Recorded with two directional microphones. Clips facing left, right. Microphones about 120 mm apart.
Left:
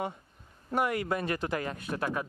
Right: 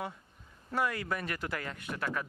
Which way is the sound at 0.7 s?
25° left (ahead or behind).